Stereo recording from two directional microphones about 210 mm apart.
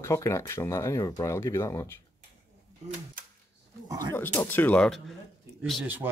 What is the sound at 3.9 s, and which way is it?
Speech, 15° right (ahead or behind).